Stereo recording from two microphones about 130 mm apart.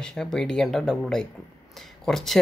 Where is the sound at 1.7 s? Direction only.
Centre (ahead or behind).